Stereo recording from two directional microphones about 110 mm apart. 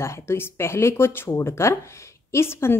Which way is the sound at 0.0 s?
25° left (ahead or behind).